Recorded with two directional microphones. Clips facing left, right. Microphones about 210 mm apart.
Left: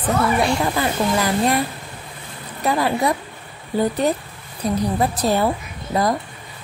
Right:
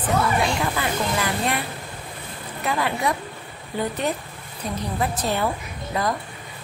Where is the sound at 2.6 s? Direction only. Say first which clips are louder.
Left 5 dB; 35° left (ahead or behind).